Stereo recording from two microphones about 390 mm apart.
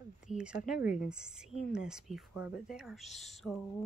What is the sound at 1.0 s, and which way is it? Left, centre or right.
Speech, centre.